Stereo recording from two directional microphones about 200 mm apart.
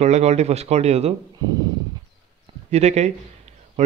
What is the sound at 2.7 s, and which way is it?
A man's voice, 35° right (ahead or behind).